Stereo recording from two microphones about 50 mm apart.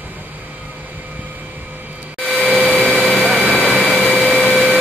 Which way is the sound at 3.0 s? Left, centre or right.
Centre.